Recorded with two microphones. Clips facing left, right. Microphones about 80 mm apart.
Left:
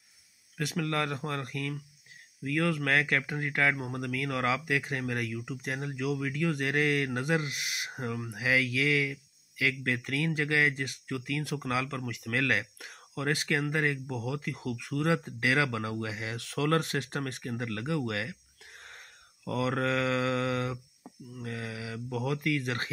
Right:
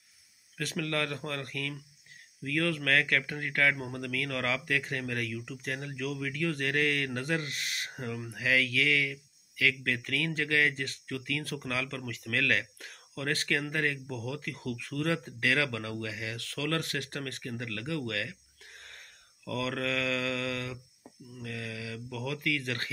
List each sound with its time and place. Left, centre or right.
0.6 s speech: centre